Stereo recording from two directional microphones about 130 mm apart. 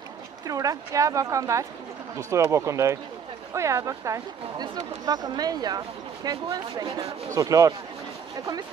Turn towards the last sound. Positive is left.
turn(degrees=-25)  # may be behind; listen again after turning